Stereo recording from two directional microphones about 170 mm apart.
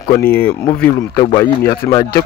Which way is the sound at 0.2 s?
10° left (ahead or behind).